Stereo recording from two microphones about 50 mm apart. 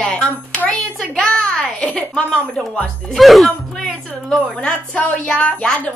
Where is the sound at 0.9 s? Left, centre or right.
Centre.